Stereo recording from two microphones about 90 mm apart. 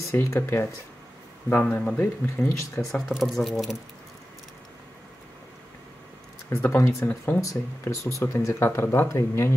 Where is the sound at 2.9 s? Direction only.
Centre (ahead or behind).